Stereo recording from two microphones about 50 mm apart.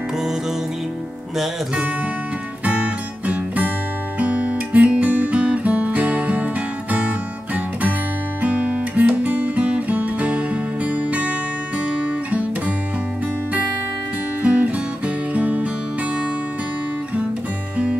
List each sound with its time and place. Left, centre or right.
2.6 s music: right
4.2 s guitar: right
9.7 s music: right
14.4 s music: right